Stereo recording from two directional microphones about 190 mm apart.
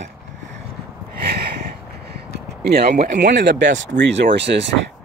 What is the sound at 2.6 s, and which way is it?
Speech, 60° right (ahead or behind).